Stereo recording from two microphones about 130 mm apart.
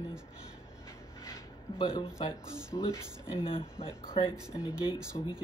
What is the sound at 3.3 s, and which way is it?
Speech, 45° left (ahead or behind).